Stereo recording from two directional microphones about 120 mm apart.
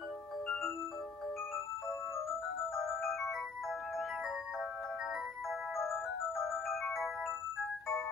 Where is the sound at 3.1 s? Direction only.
Centre (ahead or behind).